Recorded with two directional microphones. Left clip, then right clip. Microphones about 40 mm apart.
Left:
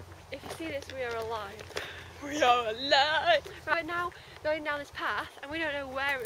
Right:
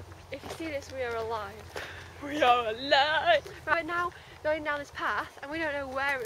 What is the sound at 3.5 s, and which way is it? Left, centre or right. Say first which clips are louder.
Speech: right 2 dB; centre.